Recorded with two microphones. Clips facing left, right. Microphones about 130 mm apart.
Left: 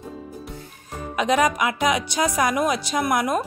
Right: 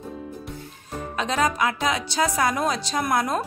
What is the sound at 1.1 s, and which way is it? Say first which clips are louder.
Speech: left 4 dB; 15° left (ahead or behind).